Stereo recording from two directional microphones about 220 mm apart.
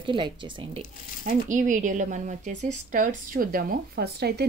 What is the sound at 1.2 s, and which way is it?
Speech, 35° right (ahead or behind).